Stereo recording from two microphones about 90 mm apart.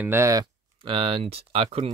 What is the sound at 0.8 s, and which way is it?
Speech, 85° right.